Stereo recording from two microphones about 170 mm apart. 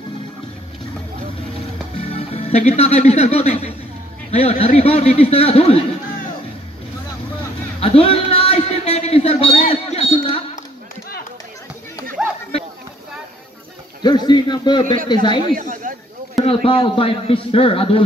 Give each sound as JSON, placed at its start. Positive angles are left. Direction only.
{"t": 2.1, "sound": "a man's voice", "side_deg": 40}
{"t": 7.8, "sound": "a sound", "side_deg": 35}
{"t": 12.2, "sound": "a sound", "side_deg": -5}
{"t": 14.0, "sound": "a man's voice", "side_deg": 25}
{"t": 15.5, "sound": "speech", "side_deg": -50}
{"t": 16.4, "sound": "a man's voice", "side_deg": 30}